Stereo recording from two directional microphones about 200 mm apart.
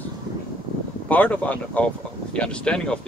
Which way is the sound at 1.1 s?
10° left (ahead or behind).